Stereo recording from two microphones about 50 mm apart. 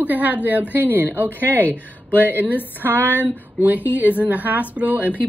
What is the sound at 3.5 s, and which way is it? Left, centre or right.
Speech, right.